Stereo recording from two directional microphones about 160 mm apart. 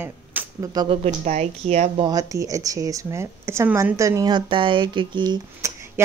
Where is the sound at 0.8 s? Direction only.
45° right (ahead or behind).